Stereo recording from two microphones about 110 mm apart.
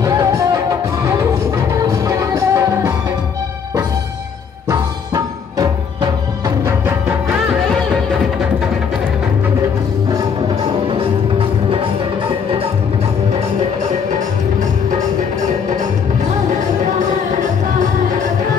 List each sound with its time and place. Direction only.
0.0 s music: 30° right (ahead or behind)
4.6 s music: 30° right (ahead or behind)
11.3 s music: 50° right (ahead or behind)